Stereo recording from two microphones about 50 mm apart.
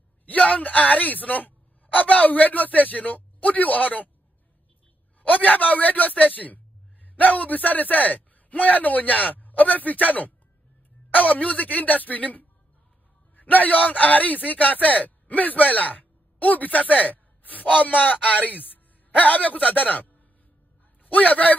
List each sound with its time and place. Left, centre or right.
0.4 s a man's voice: left
5.2 s a man's voice: left